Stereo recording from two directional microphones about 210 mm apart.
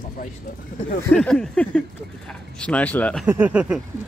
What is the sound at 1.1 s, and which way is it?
Speech, 5° left (ahead or behind).